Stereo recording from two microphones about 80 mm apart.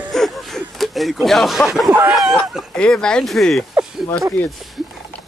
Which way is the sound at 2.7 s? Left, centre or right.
Centre.